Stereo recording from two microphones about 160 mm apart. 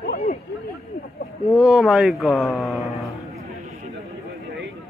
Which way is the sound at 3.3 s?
40° right (ahead or behind).